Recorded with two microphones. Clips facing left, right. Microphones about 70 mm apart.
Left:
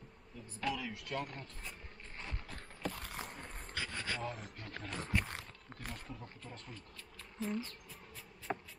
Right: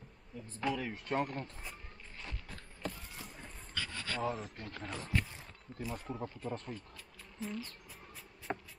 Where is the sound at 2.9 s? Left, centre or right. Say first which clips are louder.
Left 4 dB; left.